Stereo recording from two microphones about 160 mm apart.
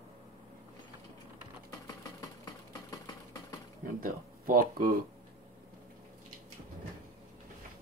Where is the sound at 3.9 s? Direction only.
65° right (ahead or behind).